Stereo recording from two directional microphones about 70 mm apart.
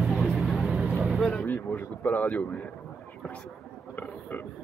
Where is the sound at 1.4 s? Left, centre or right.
Left.